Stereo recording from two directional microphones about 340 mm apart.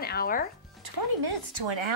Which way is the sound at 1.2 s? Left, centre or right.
Right.